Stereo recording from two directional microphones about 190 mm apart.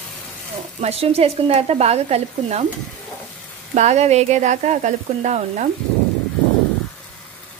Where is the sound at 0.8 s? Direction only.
30° right (ahead or behind).